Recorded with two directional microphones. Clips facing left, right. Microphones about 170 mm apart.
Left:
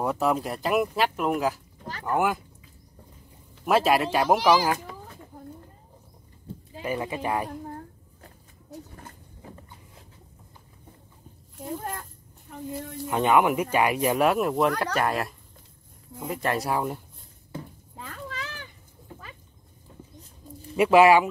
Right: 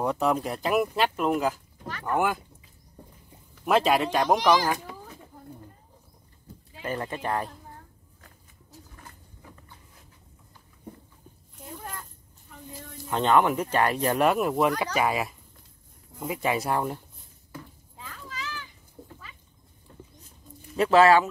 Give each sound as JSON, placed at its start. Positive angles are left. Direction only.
{"t": 0.0, "sound": "speech", "side_deg": 0}
{"t": 3.6, "sound": "speech", "side_deg": 5}
{"t": 6.5, "sound": "sheep", "side_deg": 30}
{"t": 6.8, "sound": "speech", "side_deg": 10}
{"t": 8.9, "sound": "roaring cats", "side_deg": 30}
{"t": 12.7, "sound": "speech", "side_deg": 60}
{"t": 13.1, "sound": "speech", "side_deg": 10}
{"t": 17.9, "sound": "children playing", "side_deg": 60}
{"t": 20.7, "sound": "speech", "side_deg": 10}